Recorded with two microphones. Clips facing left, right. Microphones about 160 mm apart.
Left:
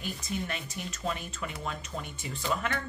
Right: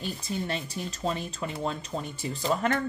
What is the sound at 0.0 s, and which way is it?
Speech, 30° right (ahead or behind).